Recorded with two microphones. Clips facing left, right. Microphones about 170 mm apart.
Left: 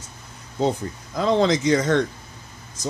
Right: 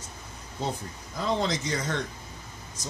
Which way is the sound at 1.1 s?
90° left.